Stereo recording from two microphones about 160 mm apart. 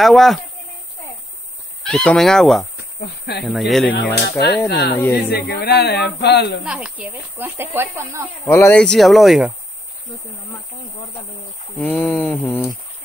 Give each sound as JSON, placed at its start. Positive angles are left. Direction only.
{"t": 0.0, "sound": "speech", "side_deg": 0}
{"t": 1.8, "sound": "speech", "side_deg": 5}
{"t": 2.8, "sound": "speech", "side_deg": 90}
{"t": 3.4, "sound": "speech", "side_deg": 0}
{"t": 3.9, "sound": "speech", "side_deg": 90}
{"t": 4.9, "sound": "speech", "side_deg": 15}
{"t": 5.3, "sound": "speech", "side_deg": 90}
{"t": 6.6, "sound": "speech", "side_deg": -5}
{"t": 8.5, "sound": "speech", "side_deg": 15}
{"t": 11.7, "sound": "speech", "side_deg": 10}